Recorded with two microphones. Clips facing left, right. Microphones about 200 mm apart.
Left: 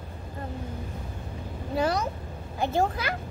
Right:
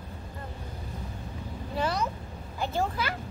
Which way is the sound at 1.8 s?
45° left (ahead or behind).